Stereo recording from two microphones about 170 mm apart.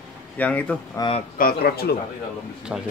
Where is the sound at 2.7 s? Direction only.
5° right (ahead or behind).